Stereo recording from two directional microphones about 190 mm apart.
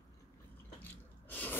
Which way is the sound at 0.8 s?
10° left (ahead or behind).